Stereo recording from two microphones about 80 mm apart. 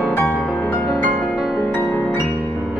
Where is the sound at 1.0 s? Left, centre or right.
Centre.